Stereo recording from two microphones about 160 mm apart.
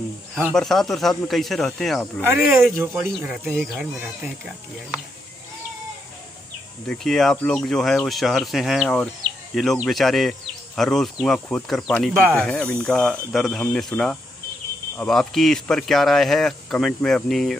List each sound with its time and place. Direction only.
0.3 s speech: centre (ahead or behind)
2.2 s speech: 10° right (ahead or behind)
3.3 s speech: centre (ahead or behind)
6.9 s speech: centre (ahead or behind)
12.2 s speech: 15° right (ahead or behind)
12.8 s speech: 5° left (ahead or behind)